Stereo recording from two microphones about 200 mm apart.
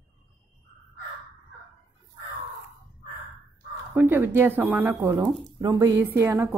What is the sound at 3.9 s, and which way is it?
Speech, 10° right (ahead or behind).